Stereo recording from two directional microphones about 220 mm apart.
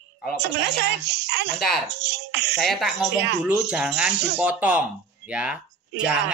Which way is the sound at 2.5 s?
Centre (ahead or behind).